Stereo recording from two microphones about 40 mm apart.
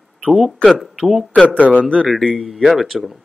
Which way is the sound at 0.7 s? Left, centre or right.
Centre.